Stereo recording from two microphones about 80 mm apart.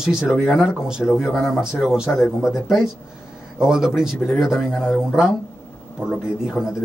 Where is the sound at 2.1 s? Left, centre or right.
Left.